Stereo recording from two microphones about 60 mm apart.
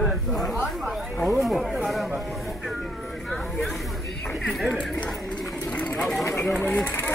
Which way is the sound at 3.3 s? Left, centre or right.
Centre.